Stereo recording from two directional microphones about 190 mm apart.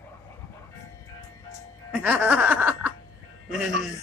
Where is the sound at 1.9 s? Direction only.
10° right (ahead or behind).